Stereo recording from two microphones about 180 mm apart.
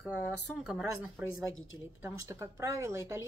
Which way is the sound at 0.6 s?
5° right (ahead or behind).